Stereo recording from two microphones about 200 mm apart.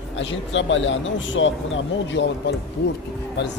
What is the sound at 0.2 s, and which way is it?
Speech, 70° left (ahead or behind).